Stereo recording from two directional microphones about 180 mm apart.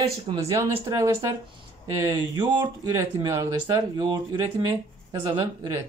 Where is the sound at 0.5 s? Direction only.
15° right (ahead or behind).